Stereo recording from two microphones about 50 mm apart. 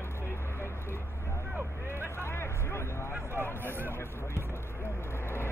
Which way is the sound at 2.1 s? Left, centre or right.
Left.